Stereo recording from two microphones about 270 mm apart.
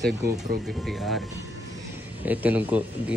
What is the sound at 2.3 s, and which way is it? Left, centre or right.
Speech, centre.